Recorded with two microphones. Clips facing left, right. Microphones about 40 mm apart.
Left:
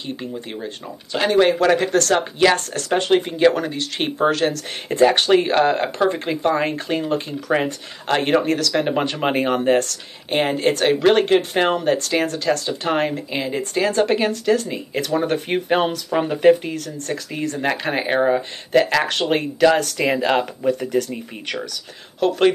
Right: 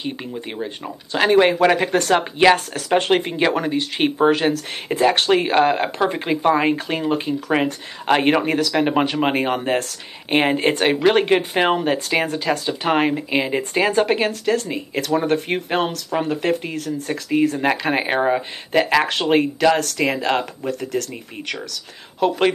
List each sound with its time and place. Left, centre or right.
0.0 s speech: centre
3.0 s speech: right; by 9.9 s centre
10.3 s speech: right; by 16.5 s centre
16.6 s speech: centre
22.2 s speech: centre